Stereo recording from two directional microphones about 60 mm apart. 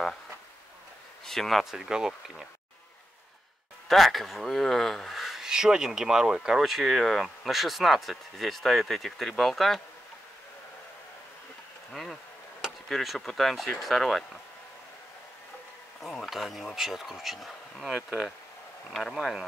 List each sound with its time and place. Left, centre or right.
1.2 s speech: centre
3.9 s speech: centre
11.9 s speech: centre
16.0 s speech: centre
18.9 s speech: centre